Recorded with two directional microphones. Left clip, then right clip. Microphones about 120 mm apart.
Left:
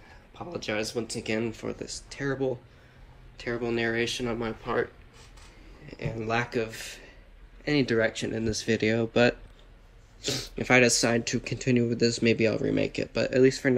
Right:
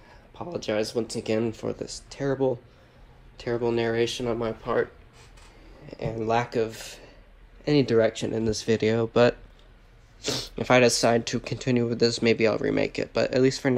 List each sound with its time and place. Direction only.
0.5 s speech: 30° right (ahead or behind)
5.9 s speech: 20° right (ahead or behind)
10.2 s speech: 15° right (ahead or behind)